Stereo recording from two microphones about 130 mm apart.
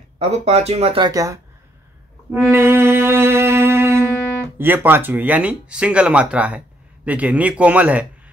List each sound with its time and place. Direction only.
0.2 s speech: 55° right (ahead or behind)
1.0 s speech: 25° right (ahead or behind)
2.3 s music: 15° right (ahead or behind)
4.6 s speech: 15° right (ahead or behind)